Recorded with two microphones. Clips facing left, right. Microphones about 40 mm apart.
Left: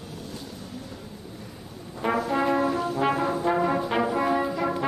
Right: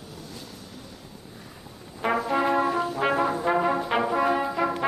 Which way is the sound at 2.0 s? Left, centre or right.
Centre.